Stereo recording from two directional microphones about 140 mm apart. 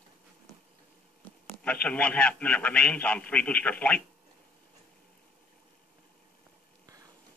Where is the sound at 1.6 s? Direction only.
10° left (ahead or behind).